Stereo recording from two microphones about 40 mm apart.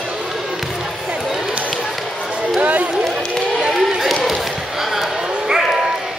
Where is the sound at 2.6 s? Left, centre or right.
Right.